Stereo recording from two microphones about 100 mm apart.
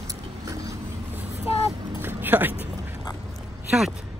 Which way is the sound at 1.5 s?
75° left (ahead or behind).